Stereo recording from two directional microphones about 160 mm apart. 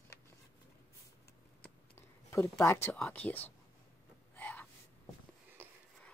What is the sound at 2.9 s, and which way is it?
Speech, 5° left (ahead or behind).